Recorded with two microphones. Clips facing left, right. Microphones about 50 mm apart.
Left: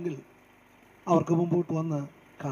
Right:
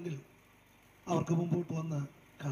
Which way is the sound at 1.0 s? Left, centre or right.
Left.